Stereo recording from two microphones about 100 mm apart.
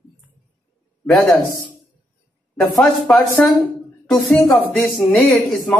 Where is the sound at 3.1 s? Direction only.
5° left (ahead or behind).